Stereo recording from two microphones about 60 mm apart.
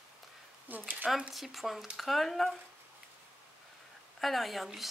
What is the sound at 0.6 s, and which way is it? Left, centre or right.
Speech, right.